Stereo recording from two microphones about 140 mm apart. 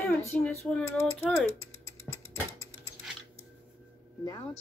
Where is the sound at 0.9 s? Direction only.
20° left (ahead or behind).